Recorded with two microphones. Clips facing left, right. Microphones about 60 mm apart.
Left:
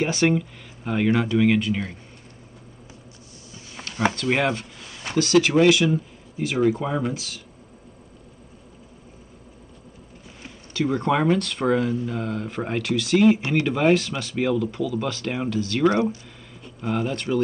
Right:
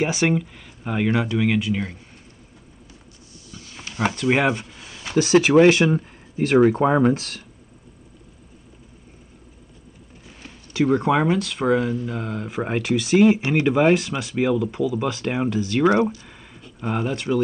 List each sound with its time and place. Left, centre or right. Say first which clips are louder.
0.0 s speech: even; centre
3.8 s speech: right 1 dB; centre
5.5 s speech: right 3 dB; right
10.7 s speech: right 3 dB; centre